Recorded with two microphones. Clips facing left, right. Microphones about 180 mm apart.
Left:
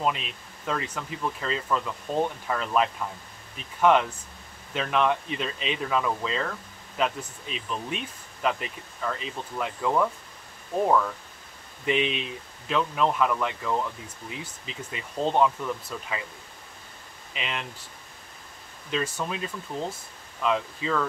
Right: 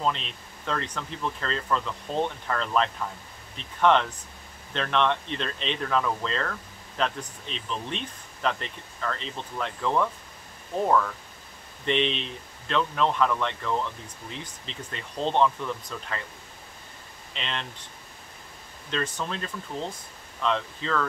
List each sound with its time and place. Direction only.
0.0 s speech: 5° left (ahead or behind)
11.8 s speech: 5° left (ahead or behind)
17.3 s speech: 5° left (ahead or behind)
18.9 s speech: 10° left (ahead or behind)